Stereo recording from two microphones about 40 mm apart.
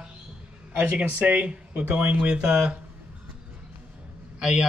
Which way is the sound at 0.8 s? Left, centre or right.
Right.